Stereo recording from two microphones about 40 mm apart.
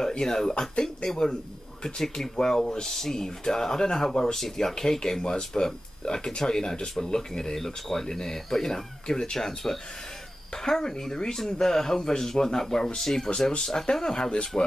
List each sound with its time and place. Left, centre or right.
0.0 s speech: centre
14.5 s speech: left